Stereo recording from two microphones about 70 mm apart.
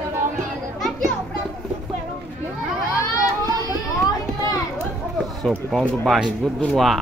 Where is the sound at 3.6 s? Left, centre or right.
Left.